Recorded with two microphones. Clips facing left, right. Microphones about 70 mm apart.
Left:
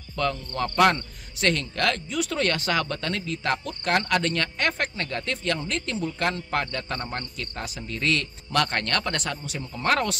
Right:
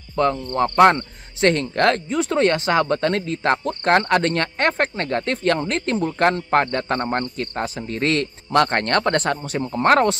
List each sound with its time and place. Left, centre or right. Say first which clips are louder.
0.1 s speech: right 7 dB; right